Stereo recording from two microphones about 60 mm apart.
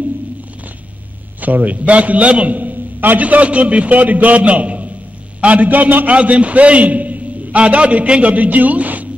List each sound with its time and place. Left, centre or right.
1.4 s a man's voice: right